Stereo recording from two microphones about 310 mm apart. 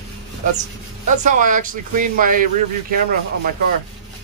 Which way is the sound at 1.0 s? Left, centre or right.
Right.